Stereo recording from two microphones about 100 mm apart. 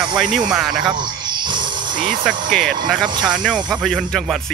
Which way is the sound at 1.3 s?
50° right (ahead or behind).